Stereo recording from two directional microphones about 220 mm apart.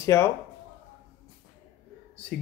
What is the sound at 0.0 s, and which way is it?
Speech, 10° left (ahead or behind).